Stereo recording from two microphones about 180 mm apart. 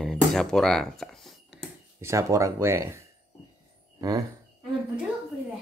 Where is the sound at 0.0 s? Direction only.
Centre (ahead or behind).